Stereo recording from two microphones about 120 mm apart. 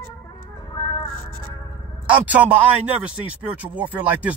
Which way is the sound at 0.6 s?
30° left (ahead or behind).